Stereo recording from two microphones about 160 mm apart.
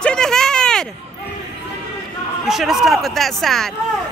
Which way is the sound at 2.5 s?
Centre (ahead or behind).